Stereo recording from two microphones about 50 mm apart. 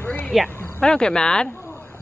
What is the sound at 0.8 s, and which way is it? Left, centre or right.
Speech, centre.